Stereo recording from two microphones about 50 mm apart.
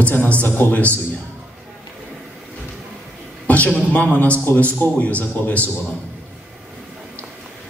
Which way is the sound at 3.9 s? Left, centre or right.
Left.